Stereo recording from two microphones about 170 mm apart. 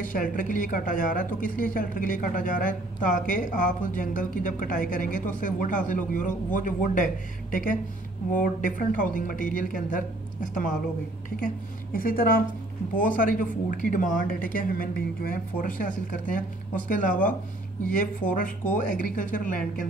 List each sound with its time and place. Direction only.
0.0 s a woman's voice: 50° left (ahead or behind)